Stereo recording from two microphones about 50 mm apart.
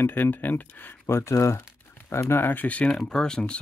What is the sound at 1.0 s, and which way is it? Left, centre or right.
Speech, left.